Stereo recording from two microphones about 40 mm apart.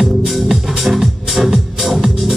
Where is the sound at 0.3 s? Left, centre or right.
Centre.